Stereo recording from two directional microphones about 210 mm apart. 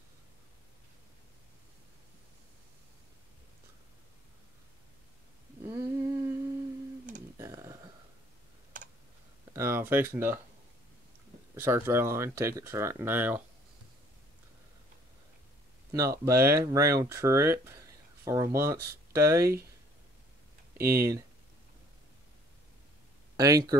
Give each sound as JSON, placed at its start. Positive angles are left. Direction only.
{"t": 5.7, "sound": "humming", "side_deg": -15}
{"t": 7.3, "sound": "a sound", "side_deg": -15}
{"t": 9.5, "sound": "speech", "side_deg": -10}
{"t": 11.5, "sound": "speech", "side_deg": -10}
{"t": 15.9, "sound": "speech", "side_deg": -15}
{"t": 20.8, "sound": "speech", "side_deg": -15}
{"t": 23.3, "sound": "speech", "side_deg": -15}